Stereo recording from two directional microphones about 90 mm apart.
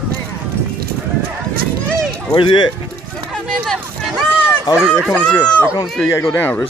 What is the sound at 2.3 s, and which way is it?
Speech, 65° left (ahead or behind).